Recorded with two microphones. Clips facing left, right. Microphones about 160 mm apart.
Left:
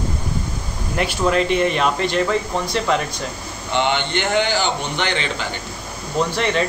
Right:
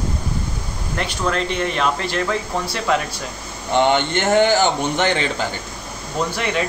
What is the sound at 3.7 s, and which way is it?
A man's voice, 45° right (ahead or behind).